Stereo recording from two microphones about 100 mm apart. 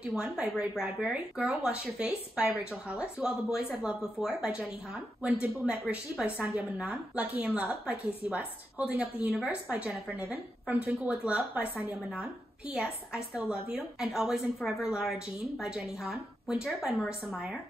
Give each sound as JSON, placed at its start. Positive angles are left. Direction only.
{"t": 0.1, "sound": "a woman's voice", "side_deg": -10}